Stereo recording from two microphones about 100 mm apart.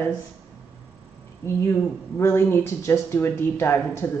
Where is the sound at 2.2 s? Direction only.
25° left (ahead or behind).